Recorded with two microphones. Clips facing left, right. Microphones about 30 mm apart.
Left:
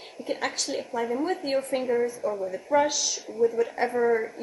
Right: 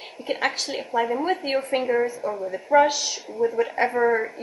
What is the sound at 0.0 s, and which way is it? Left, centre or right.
A woman's voice, right.